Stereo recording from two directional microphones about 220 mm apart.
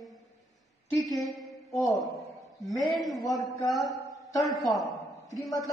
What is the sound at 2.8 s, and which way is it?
Speech, centre (ahead or behind).